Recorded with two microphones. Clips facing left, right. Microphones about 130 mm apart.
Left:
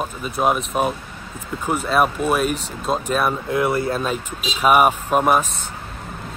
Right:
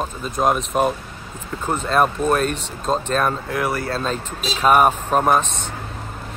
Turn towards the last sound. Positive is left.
turn(degrees=10)  # may be behind; listen again after turning